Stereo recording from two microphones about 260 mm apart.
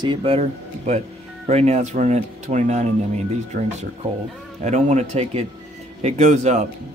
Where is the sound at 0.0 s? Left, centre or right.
Centre.